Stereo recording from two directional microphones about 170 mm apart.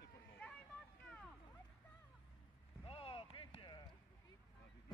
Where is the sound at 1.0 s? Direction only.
5° left (ahead or behind).